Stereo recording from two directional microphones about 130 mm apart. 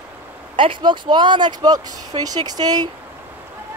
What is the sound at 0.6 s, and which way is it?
Speech, 40° right (ahead or behind).